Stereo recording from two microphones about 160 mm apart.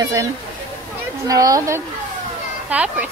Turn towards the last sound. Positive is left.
turn(degrees=-10)  # may be behind; listen again after turning